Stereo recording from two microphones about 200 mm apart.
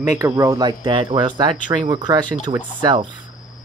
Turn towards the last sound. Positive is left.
turn(degrees=-20)  # may be behind; listen again after turning